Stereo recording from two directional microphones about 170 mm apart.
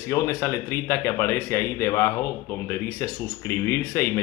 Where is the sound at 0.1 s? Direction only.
15° left (ahead or behind).